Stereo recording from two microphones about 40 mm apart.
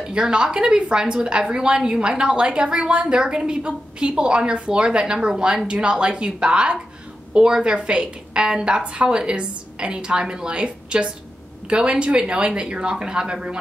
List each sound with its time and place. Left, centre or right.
0.0 s a woman's voice: right